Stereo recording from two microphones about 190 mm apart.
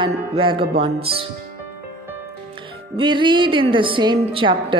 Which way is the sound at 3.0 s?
25° right (ahead or behind).